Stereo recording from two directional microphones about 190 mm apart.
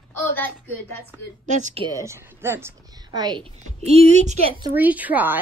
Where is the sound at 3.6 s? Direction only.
35° right (ahead or behind).